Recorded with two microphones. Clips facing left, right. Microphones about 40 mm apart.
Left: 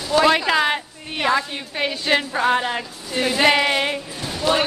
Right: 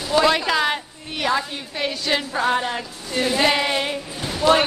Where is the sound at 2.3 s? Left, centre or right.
Centre.